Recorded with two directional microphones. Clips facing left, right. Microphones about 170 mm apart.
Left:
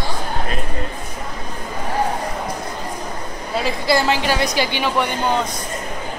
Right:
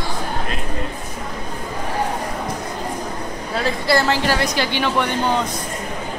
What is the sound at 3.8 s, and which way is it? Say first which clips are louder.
A woman's voice: even; 15° left (ahead or behind).